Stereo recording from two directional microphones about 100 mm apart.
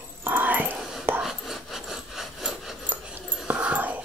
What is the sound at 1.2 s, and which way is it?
Sawing, 5° right (ahead or behind).